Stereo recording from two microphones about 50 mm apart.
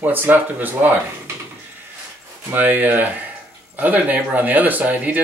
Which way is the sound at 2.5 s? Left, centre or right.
Right.